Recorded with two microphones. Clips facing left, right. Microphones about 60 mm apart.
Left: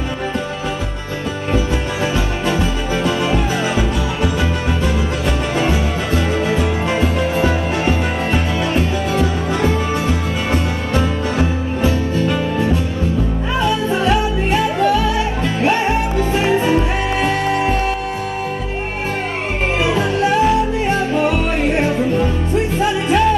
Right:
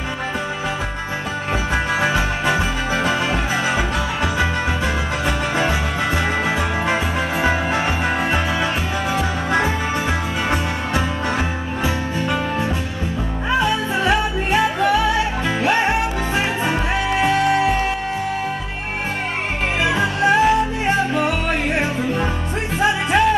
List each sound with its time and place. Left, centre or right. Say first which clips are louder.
2.1 s music: even; right
5.6 s music: left 2 dB; centre
13.7 s music: left 2 dB; centre
16.3 s music: left 6 dB; centre
19.9 s music: right 1 dB; centre
22.8 s music: right 1 dB; centre